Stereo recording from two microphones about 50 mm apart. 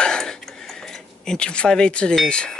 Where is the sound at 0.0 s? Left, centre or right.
Centre.